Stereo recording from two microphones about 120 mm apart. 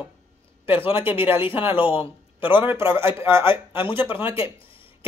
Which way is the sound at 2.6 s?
15° right (ahead or behind).